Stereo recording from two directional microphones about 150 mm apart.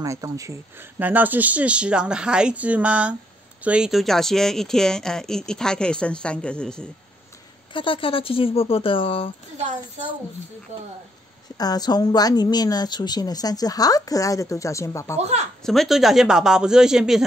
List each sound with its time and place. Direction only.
0.0 s speech: 20° right (ahead or behind); by 6.9 s 5° left (ahead or behind)
7.7 s speech: 35° left (ahead or behind)
10.7 s speech: 50° right (ahead or behind)
11.5 s a woman's voice: 25° left (ahead or behind)
15.6 s speech: centre (ahead or behind)